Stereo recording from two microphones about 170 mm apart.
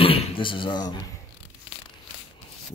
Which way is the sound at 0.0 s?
30° left (ahead or behind).